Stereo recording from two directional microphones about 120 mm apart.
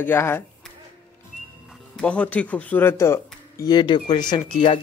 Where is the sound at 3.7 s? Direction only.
40° left (ahead or behind).